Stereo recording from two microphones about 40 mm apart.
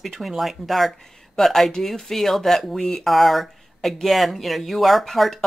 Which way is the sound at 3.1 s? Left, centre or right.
Centre.